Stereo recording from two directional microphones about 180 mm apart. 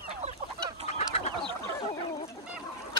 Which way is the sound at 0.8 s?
40° left (ahead or behind).